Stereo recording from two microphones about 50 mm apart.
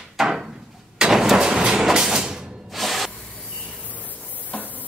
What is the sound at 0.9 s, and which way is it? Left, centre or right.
Vehicle, centre.